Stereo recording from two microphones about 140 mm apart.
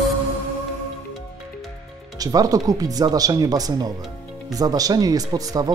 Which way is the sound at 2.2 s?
25° right (ahead or behind).